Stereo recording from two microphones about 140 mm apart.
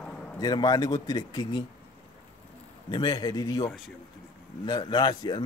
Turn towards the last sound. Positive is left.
turn(degrees=30)  # may be behind; listen again after turning